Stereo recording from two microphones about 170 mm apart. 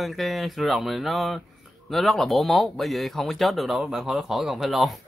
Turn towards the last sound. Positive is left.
turn(degrees=0)  # may be behind; listen again after turning